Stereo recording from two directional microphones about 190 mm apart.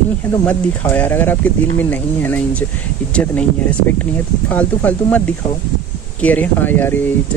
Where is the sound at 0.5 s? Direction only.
10° left (ahead or behind).